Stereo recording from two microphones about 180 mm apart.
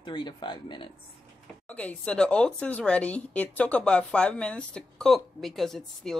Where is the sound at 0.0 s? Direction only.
25° left (ahead or behind).